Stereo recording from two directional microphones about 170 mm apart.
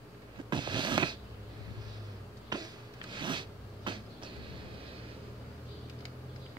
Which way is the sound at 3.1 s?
30° right (ahead or behind).